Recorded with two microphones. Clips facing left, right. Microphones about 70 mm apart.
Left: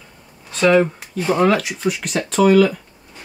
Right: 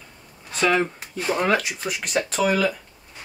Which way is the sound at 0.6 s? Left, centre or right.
Centre.